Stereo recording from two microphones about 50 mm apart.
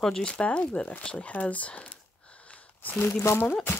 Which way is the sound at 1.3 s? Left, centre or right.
Left.